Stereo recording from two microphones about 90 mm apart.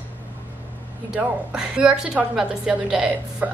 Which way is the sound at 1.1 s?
10° right (ahead or behind).